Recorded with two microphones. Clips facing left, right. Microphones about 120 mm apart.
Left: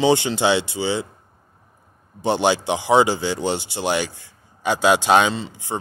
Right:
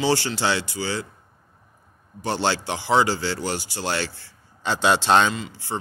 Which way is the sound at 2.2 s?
20° left (ahead or behind).